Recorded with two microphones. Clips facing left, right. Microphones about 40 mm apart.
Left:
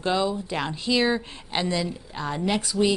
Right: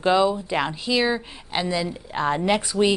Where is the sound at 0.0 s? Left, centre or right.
Centre.